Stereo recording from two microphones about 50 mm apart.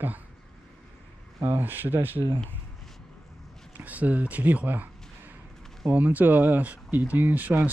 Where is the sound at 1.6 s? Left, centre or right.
Right.